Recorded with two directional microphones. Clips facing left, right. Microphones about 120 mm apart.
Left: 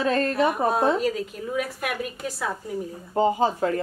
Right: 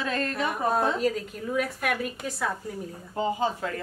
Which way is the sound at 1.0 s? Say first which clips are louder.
Left 1 dB; 5° left (ahead or behind).